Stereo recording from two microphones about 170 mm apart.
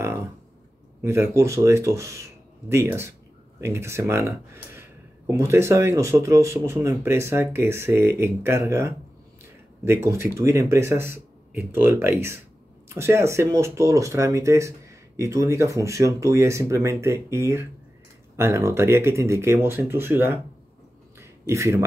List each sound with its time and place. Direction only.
1.0 s speech: 15° right (ahead or behind)
10.0 s speech: 15° right (ahead or behind)
21.2 s a sound: 15° right (ahead or behind)